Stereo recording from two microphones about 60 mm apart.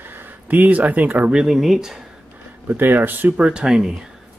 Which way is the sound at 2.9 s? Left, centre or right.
Right.